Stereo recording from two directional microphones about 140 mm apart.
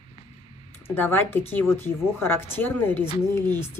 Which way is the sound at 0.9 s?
15° left (ahead or behind).